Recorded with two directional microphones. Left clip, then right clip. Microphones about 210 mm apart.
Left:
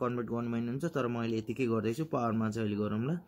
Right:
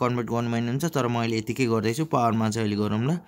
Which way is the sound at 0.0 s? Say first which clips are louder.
Right 8 dB; 45° right (ahead or behind).